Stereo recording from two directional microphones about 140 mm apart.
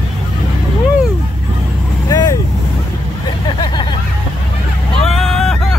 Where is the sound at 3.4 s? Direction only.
35° left (ahead or behind).